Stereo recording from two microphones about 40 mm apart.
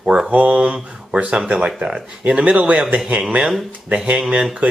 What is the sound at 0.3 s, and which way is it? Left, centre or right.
Speech, right.